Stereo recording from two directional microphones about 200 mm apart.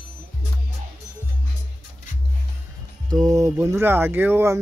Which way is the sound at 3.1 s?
15° right (ahead or behind).